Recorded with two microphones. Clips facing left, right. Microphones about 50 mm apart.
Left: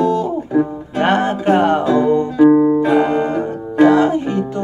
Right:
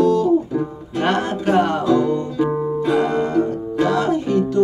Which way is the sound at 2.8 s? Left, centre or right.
Left.